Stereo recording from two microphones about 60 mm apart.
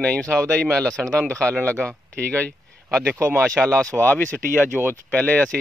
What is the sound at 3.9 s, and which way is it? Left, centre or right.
Speech, left.